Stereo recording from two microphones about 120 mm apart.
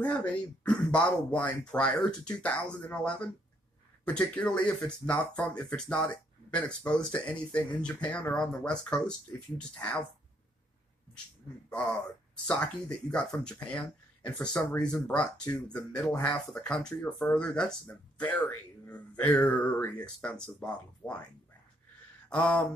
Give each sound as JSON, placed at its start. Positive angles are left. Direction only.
{"t": 0.0, "sound": "speech", "side_deg": 10}
{"t": 12.4, "sound": "speech", "side_deg": 10}
{"t": 22.3, "sound": "speech", "side_deg": 10}